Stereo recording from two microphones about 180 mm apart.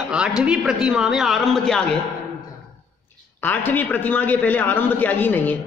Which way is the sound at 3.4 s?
10° left (ahead or behind).